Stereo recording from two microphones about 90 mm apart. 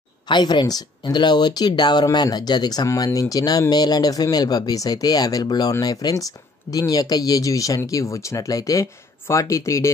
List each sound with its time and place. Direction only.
0.3 s speech: 55° left (ahead or behind)
2.9 s speech: 40° left (ahead or behind)